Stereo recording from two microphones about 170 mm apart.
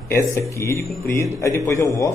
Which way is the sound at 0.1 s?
20° left (ahead or behind).